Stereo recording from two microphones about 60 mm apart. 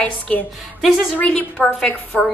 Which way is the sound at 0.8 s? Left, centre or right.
Centre.